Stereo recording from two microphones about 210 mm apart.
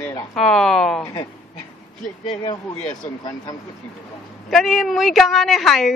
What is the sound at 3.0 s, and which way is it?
Speech, 15° left (ahead or behind).